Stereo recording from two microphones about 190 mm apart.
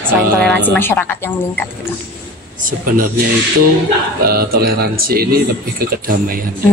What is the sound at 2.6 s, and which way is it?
Speech, 45° right (ahead or behind).